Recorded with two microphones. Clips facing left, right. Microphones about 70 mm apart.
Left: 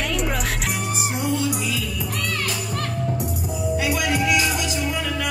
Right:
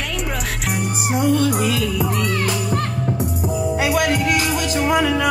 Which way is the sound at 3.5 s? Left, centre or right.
Right.